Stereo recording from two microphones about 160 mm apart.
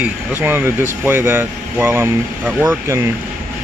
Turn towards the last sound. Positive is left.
turn(degrees=-15)  # may be behind; listen again after turning